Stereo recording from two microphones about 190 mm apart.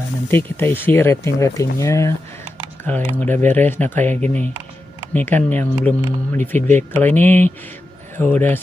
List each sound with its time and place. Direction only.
0.3 s speech: 10° left (ahead or behind)